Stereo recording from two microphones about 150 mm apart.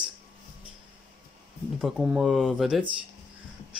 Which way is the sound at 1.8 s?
5° right (ahead or behind).